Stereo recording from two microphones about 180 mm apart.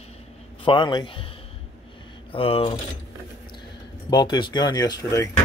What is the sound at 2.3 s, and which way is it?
Speech, 30° left (ahead or behind).